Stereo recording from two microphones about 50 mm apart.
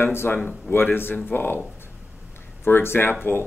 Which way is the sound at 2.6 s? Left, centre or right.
Left.